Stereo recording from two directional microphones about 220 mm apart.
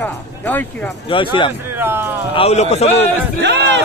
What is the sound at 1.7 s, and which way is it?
Speech, 10° right (ahead or behind).